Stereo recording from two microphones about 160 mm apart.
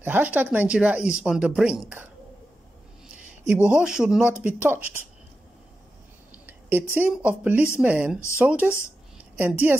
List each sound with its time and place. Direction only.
0.0 s speech: 10° right (ahead or behind)
3.4 s speech: 10° right (ahead or behind)
6.3 s speech: 15° right (ahead or behind)